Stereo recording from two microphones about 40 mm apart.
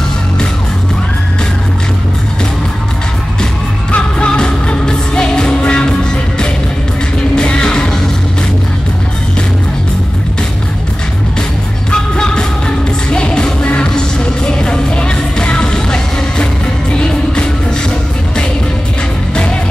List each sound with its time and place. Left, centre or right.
3.9 s music: left
7.3 s music: left
11.9 s music: centre